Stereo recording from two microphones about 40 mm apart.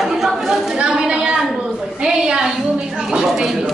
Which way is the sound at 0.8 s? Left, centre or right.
Centre.